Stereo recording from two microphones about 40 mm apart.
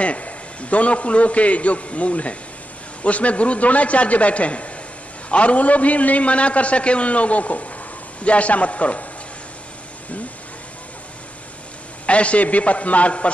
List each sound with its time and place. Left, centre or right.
0.0 s a man's voice: left
12.1 s a man's voice: left